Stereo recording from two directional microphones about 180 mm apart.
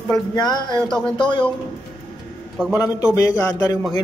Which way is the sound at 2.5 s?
5° right (ahead or behind).